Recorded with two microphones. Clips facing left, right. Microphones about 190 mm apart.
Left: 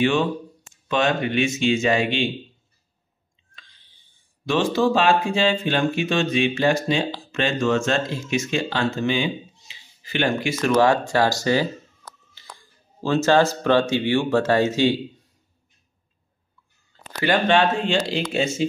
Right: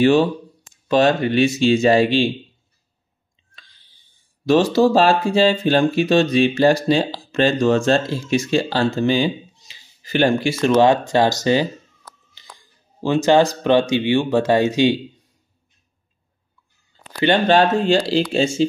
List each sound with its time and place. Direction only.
0.0 s speech: 35° right (ahead or behind)
4.5 s speech: 40° right (ahead or behind); by 15.0 s 15° right (ahead or behind)
16.9 s a sound: 15° right (ahead or behind)
17.5 s speech: 40° right (ahead or behind)